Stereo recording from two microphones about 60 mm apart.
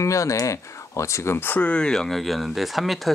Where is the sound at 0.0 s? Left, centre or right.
Left.